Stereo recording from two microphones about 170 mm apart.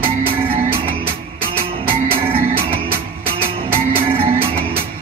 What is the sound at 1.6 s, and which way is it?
Music, 30° right (ahead or behind).